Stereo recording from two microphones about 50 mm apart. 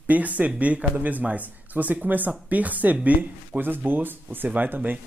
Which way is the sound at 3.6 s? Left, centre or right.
Right.